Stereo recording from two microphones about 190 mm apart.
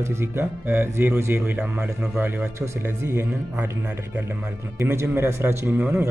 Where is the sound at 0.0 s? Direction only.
10° right (ahead or behind).